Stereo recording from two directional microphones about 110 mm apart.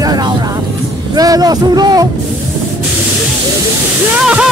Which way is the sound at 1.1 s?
35° right (ahead or behind).